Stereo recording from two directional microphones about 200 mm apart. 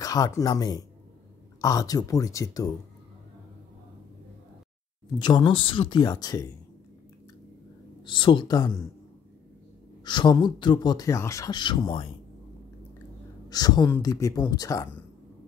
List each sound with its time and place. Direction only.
0.0 s speech: 20° left (ahead or behind)
5.2 s speech: 25° left (ahead or behind)
8.0 s speech: 25° left (ahead or behind)
10.0 s speech: 20° left (ahead or behind)
13.5 s speech: 20° left (ahead or behind)